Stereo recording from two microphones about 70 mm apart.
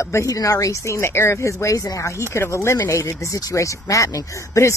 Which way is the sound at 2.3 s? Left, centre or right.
Left.